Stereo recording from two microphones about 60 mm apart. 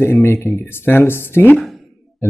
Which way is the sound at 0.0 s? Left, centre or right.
Left.